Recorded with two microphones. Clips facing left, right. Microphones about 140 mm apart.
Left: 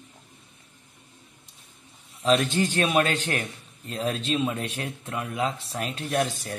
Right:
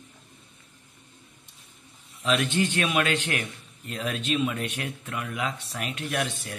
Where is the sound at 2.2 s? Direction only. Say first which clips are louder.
Left 3 dB; 35° left (ahead or behind).